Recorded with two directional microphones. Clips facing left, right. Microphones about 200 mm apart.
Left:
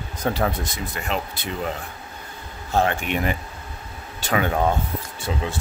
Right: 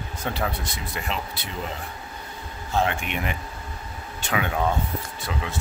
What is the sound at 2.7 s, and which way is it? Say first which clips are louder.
Speech: left 3 dB; 45° left (ahead or behind).